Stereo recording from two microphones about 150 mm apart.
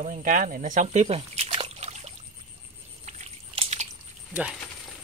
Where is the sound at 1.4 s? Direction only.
40° right (ahead or behind).